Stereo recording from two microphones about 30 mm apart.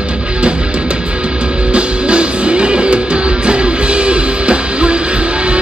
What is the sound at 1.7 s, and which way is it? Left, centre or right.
Music, right.